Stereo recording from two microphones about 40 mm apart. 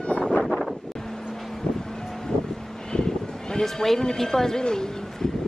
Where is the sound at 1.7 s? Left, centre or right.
Centre.